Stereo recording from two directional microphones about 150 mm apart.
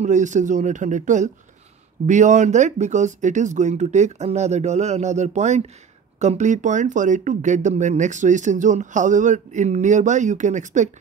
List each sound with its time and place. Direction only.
0.0 s speech: 55° right (ahead or behind)